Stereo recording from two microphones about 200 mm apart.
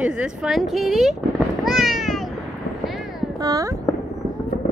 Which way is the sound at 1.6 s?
Centre (ahead or behind).